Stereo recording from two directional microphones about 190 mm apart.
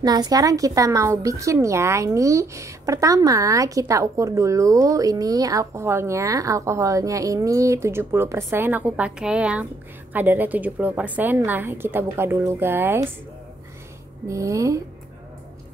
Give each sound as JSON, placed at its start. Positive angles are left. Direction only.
{"t": 0.0, "sound": "speech", "side_deg": -20}
{"t": 14.2, "sound": "speech", "side_deg": -15}